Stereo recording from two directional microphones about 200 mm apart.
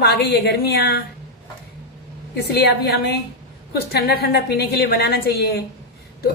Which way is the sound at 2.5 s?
55° left (ahead or behind).